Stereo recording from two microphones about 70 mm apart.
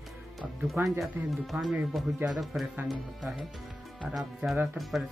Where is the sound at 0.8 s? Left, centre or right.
Centre.